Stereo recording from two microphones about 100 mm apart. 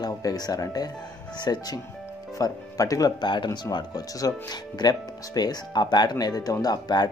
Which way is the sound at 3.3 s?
45° left (ahead or behind).